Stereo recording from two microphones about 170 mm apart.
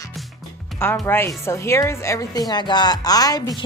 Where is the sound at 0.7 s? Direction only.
15° left (ahead or behind).